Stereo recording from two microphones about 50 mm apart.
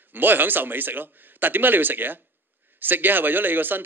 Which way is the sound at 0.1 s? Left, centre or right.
Right.